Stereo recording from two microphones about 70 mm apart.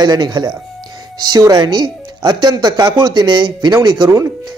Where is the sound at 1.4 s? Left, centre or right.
Right.